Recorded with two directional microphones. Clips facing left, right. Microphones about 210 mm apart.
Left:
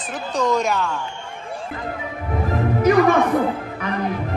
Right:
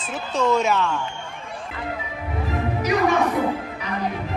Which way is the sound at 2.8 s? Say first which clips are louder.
Left 6 dB; 55° left (ahead or behind).